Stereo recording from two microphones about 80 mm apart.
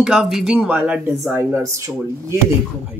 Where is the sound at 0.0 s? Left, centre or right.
Centre.